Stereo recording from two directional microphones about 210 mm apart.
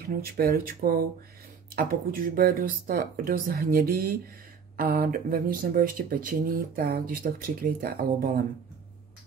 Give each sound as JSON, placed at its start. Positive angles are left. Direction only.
{"t": 0.1, "sound": "speech", "side_deg": -45}